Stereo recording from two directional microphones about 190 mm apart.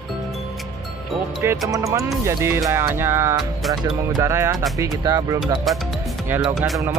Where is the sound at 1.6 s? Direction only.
15° right (ahead or behind).